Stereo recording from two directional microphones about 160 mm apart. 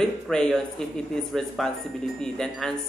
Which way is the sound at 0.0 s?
5° left (ahead or behind).